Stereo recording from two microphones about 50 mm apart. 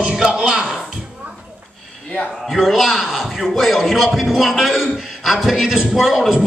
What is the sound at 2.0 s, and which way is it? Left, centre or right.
Speech, left.